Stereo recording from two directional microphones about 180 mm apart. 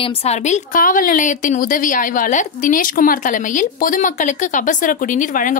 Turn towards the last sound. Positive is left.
turn(degrees=50)  # may be behind; listen again after turning